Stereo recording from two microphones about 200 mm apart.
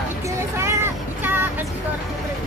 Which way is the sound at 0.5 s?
15° right (ahead or behind).